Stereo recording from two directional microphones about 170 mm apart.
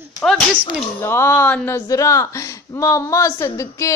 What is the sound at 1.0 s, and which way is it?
Speech, 15° left (ahead or behind).